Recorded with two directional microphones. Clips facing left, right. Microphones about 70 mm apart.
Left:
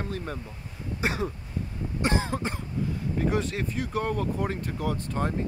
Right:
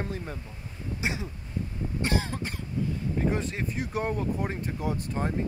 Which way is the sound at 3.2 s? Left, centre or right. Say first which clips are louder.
Left 2 dB; centre.